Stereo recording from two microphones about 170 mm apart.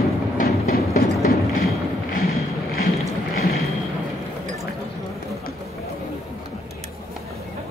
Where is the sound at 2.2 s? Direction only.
65° left (ahead or behind).